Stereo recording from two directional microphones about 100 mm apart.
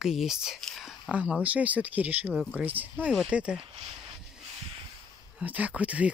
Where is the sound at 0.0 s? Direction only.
5° right (ahead or behind).